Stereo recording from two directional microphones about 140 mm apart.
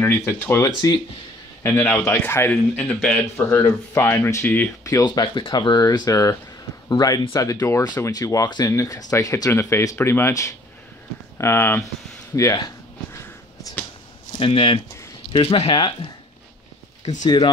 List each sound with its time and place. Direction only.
0.0 s speech: 15° left (ahead or behind)
1.6 s a man's voice: 20° left (ahead or behind)
3.3 s a man's voice: 20° left (ahead or behind)
4.8 s a man's voice: 25° left (ahead or behind)
12.4 s a sound: 25° left (ahead or behind)
14.4 s speech: 40° left (ahead or behind)
17.0 s speech: 60° left (ahead or behind)